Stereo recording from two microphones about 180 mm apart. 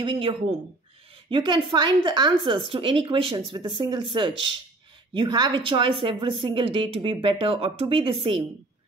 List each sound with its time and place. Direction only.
0.0 s a woman's voice: 30° right (ahead or behind)